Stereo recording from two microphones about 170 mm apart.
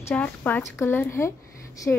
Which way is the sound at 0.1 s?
10° left (ahead or behind).